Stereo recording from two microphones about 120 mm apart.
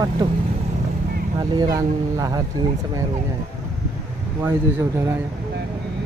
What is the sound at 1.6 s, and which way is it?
Speech, 30° right (ahead or behind).